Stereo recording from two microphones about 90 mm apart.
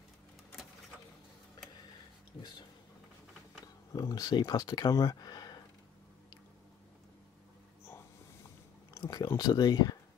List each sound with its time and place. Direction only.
3.6 s speech: 45° left (ahead or behind)
9.0 s a sound: 45° left (ahead or behind)
9.4 s speech: 45° left (ahead or behind)